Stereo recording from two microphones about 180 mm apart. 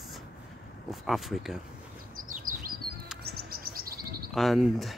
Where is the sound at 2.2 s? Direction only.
50° right (ahead or behind).